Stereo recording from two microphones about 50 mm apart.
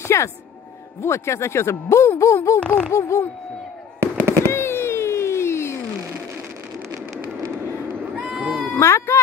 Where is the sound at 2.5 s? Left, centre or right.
Left.